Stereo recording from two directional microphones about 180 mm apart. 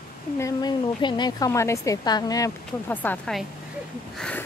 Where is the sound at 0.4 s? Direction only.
20° left (ahead or behind).